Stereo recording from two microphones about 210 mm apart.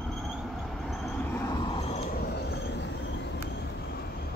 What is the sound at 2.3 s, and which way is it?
Train, 55° left (ahead or behind).